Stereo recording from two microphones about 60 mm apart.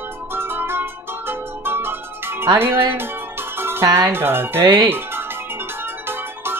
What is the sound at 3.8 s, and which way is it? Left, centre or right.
Speech, right.